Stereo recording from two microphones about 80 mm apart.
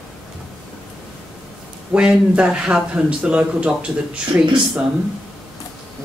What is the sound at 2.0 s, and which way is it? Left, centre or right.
Speech, centre.